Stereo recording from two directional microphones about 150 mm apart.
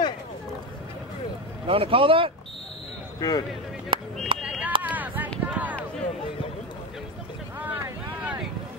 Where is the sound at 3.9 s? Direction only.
35° right (ahead or behind).